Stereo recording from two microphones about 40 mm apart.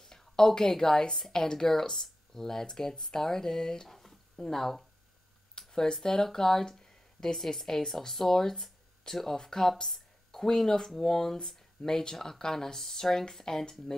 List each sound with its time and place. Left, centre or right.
0.0 s a woman's voice: centre
3.9 s a sound: centre
4.4 s speech: centre
5.5 s speech: centre